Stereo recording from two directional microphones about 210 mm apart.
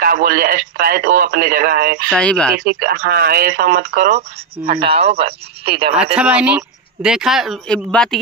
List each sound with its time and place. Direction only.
0.0 s speech: 45° right (ahead or behind)
2.0 s speech: 5° left (ahead or behind)
2.5 s speech: 45° right (ahead or behind)
4.7 s speech: 25° right (ahead or behind)
6.1 s speech: 5° right (ahead or behind)